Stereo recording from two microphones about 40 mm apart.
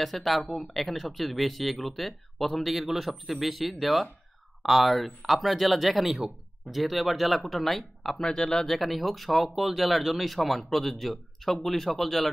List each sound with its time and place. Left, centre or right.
0.0 s speech: centre
8.2 s speech: centre
8.6 s speech: centre